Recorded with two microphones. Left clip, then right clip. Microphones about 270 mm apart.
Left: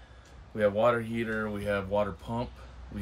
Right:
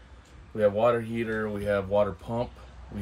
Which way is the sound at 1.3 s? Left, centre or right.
Centre.